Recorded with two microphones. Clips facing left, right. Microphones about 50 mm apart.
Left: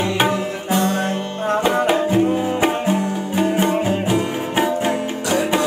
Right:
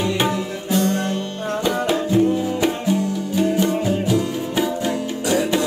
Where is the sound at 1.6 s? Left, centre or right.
Left.